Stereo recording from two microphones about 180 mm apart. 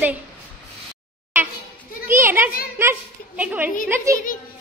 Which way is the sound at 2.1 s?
10° right (ahead or behind).